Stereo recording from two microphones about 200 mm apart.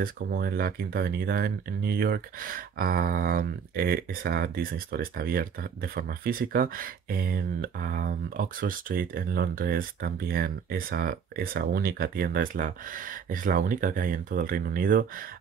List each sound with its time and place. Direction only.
0.0 s speech: 50° right (ahead or behind)